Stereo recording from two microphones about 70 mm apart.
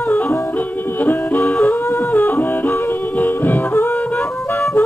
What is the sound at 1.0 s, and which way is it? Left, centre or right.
Music, left.